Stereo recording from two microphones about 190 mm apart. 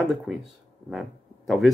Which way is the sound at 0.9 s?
Centre (ahead or behind).